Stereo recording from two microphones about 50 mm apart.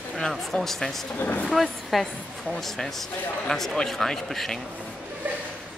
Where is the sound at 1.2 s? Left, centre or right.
Left.